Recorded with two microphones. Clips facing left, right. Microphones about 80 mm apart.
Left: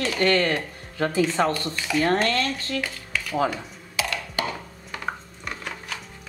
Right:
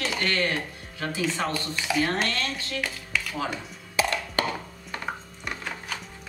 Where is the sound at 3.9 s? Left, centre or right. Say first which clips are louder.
Right 3 dB; right.